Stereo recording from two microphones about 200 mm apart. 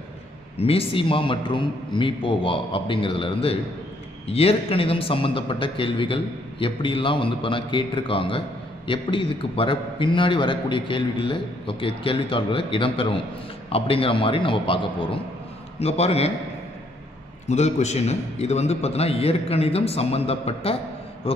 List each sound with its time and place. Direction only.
0.6 s a man's voice: 30° left (ahead or behind)
17.5 s a man's voice: 35° left (ahead or behind)